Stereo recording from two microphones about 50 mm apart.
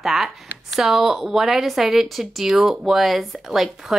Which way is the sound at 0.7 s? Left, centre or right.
Centre.